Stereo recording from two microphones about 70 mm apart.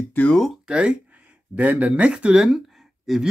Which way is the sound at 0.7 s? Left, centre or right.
Centre.